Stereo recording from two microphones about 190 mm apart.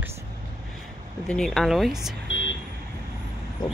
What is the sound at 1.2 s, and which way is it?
Speech, 5° left (ahead or behind).